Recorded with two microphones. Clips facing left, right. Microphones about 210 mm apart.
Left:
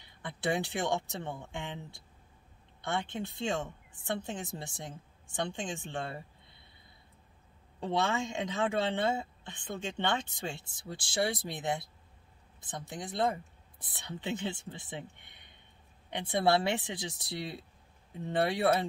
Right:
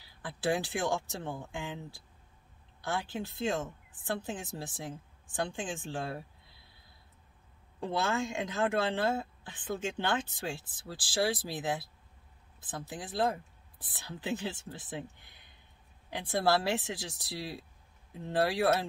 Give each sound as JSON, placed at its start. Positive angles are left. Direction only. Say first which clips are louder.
{"t": 0.0, "sound": "speech", "louder": "right 1 dB", "side_deg": -5}
{"t": 7.9, "sound": "speech", "louder": "left 1 dB", "side_deg": 0}